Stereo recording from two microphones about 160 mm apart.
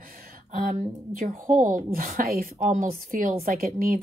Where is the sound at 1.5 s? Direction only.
55° right (ahead or behind).